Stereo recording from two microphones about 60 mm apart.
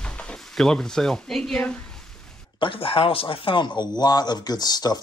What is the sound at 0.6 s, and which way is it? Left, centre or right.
Speech, centre.